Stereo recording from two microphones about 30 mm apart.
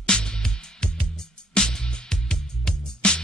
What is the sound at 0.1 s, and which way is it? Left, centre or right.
Music, left.